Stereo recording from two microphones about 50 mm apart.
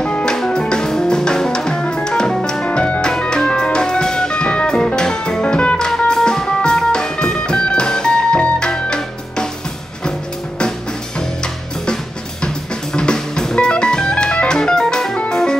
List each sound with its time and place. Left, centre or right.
0.0 s music: centre
2.6 s music: left
11.1 s music: centre